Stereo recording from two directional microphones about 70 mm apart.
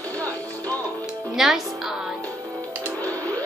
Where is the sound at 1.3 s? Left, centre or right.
Centre.